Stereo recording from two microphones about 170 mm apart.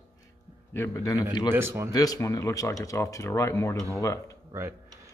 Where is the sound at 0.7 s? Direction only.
15° left (ahead or behind).